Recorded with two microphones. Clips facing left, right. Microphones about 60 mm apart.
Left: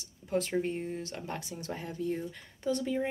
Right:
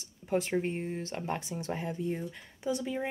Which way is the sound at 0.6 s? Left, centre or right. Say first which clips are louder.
Even; right.